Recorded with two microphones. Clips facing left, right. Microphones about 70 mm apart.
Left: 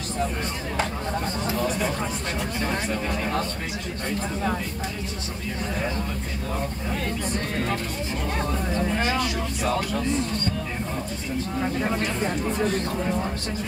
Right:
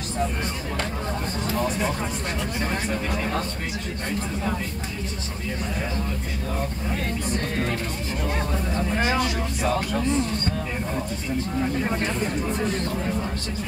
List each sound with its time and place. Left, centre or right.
9.0 s speech: right